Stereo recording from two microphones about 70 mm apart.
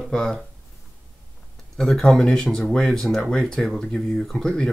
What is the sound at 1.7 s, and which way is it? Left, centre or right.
Speech, centre.